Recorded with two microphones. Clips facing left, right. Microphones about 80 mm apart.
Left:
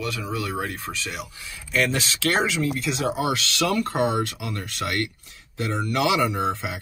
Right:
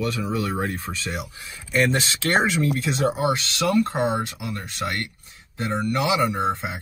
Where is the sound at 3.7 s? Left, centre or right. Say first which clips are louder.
Right 3 dB; centre.